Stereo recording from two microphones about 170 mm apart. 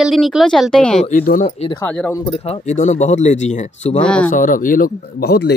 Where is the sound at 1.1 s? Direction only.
55° left (ahead or behind).